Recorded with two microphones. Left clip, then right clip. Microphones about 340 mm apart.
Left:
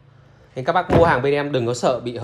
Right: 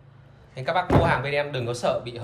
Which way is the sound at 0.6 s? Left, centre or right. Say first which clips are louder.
Left 6 dB; centre.